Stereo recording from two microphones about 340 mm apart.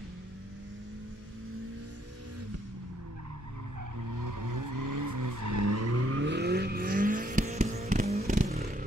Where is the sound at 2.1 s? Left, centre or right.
Right.